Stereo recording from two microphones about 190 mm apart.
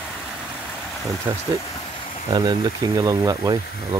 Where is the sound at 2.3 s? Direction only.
25° right (ahead or behind).